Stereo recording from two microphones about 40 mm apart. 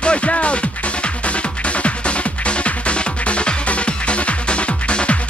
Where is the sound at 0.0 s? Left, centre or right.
Left.